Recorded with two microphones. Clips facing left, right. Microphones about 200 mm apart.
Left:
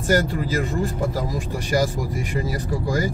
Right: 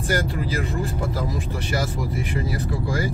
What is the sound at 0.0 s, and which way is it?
Speech, 40° left (ahead or behind).